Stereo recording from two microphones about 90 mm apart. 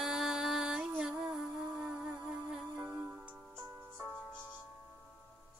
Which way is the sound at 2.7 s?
30° right (ahead or behind).